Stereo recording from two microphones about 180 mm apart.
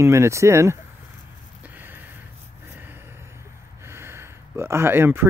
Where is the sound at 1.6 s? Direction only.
10° right (ahead or behind).